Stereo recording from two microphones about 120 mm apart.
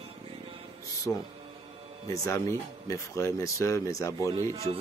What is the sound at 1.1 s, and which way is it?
Speech, 20° left (ahead or behind).